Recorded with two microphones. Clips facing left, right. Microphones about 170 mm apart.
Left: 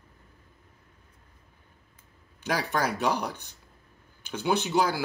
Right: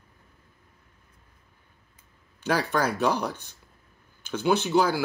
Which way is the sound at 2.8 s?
15° left (ahead or behind).